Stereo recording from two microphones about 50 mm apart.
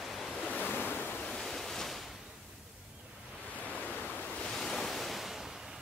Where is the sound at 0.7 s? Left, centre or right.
Left.